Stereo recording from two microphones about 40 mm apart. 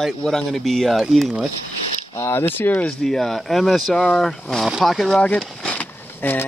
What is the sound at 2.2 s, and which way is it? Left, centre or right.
Speech, left.